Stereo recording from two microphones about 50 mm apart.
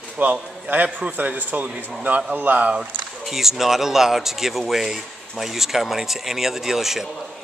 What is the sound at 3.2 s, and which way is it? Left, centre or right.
A man's voice, centre.